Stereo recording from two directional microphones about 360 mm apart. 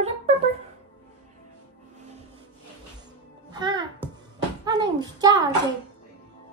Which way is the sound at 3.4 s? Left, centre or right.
Centre.